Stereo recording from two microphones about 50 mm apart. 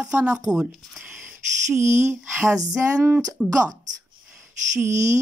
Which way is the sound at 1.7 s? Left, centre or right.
Right.